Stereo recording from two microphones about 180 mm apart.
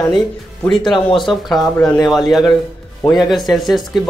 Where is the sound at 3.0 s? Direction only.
20° left (ahead or behind).